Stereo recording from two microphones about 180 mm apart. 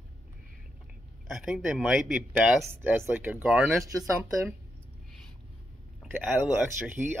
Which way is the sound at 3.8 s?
20° right (ahead or behind).